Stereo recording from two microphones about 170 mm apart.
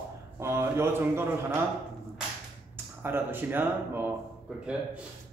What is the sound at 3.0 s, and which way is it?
A man's voice, 10° right (ahead or behind).